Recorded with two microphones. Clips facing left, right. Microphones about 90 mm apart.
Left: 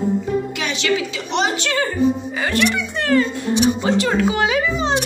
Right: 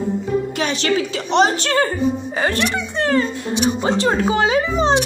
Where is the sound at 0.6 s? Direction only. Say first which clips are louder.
Right 2 dB; 40° right (ahead or behind).